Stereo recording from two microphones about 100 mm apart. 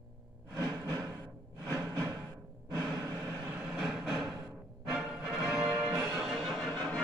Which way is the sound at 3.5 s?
10° right (ahead or behind).